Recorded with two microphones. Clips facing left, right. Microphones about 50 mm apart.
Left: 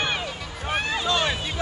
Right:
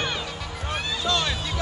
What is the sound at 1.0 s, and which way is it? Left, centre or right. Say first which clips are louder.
Hubbub: right 1 dB; left.